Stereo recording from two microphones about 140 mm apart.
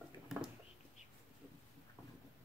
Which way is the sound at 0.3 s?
5° right (ahead or behind).